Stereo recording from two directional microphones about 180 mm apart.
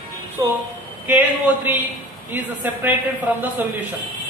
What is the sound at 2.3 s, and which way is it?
Speech, 10° right (ahead or behind).